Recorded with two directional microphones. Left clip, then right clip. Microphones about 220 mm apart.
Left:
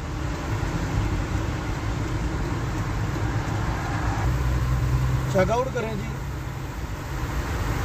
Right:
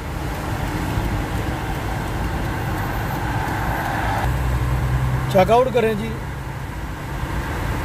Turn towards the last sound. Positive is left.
turn(degrees=-35)  # may be behind; listen again after turning